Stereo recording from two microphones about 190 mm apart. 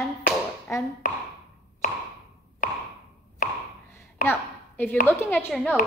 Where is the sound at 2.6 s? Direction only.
45° left (ahead or behind).